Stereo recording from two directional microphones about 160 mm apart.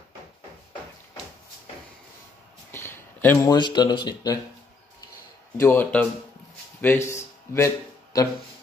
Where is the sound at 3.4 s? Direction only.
25° left (ahead or behind).